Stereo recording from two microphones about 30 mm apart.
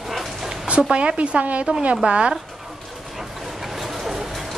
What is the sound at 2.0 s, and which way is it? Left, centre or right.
Speech, right.